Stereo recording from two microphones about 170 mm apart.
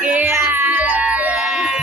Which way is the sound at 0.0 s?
10° right (ahead or behind).